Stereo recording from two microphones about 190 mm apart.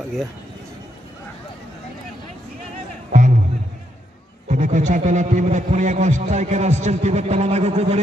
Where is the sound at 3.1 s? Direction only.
45° right (ahead or behind).